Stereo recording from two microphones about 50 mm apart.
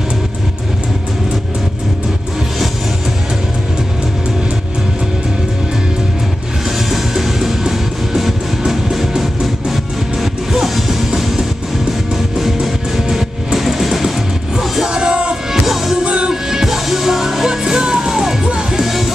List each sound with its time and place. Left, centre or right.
6.9 s music: centre
14.9 s music: centre
15.6 s music: centre